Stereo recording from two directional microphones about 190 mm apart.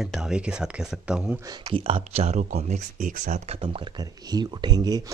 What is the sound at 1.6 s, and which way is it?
Speech, 30° right (ahead or behind).